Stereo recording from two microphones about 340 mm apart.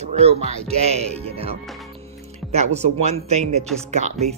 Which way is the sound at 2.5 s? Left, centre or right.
Centre.